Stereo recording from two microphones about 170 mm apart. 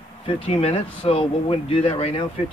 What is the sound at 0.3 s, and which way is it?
Speech, 35° left (ahead or behind).